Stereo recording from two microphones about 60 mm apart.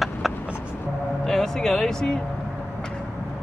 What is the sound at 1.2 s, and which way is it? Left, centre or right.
Speech, centre.